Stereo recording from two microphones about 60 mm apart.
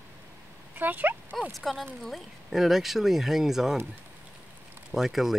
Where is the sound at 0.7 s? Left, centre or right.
Right.